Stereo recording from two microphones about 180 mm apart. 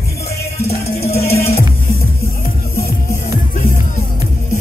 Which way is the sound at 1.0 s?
15° left (ahead or behind).